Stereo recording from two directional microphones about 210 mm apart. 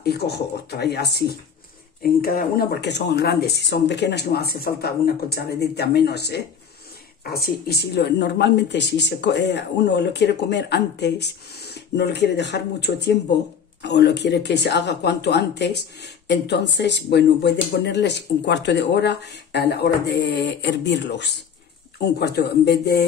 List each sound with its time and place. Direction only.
0.0 s speech: 50° left (ahead or behind)